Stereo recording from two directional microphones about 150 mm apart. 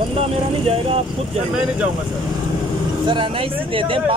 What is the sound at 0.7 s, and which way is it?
Speech, 40° right (ahead or behind).